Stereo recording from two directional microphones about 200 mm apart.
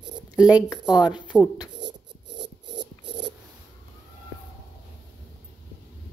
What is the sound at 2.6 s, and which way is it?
Filing, 25° right (ahead or behind).